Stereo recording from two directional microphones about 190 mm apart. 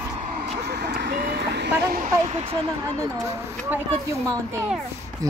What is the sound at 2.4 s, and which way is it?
Speech, 30° right (ahead or behind).